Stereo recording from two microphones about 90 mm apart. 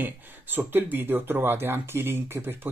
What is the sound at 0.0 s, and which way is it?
Speech, 20° right (ahead or behind).